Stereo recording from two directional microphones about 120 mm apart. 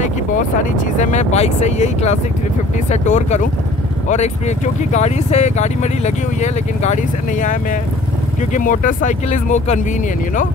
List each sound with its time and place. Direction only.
0.0 s speech: 90° left